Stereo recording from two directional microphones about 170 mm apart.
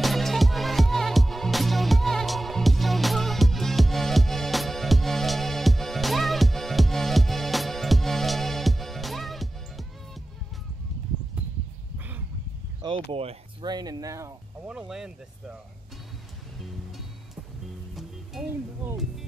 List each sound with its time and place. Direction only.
0.0 s music: centre (ahead or behind)
13.1 s speech: 35° right (ahead or behind); by 14.3 s 20° right (ahead or behind)
14.7 s speech: 5° right (ahead or behind)